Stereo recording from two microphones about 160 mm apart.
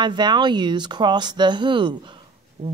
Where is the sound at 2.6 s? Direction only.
40° right (ahead or behind).